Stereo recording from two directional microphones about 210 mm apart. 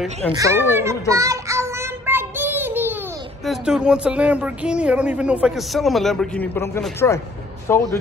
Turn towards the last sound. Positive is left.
turn(degrees=10)  # may be behind; listen again after turning